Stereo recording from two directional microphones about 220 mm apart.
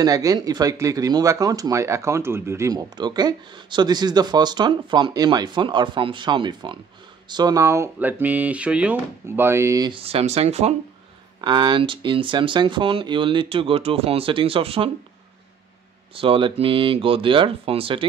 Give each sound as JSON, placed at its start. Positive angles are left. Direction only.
{"t": 0.0, "sound": "speech", "side_deg": -15}
{"t": 16.2, "sound": "speech", "side_deg": -25}